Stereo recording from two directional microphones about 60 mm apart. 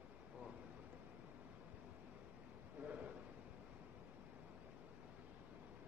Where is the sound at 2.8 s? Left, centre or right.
Right.